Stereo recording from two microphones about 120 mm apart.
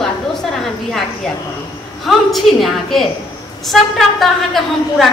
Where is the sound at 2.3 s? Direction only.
Centre (ahead or behind).